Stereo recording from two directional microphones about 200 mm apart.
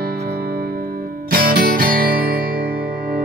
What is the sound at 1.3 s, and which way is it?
Music, 45° right (ahead or behind).